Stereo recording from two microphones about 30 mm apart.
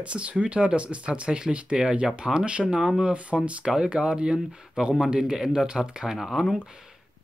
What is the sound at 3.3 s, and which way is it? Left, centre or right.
Speech, right.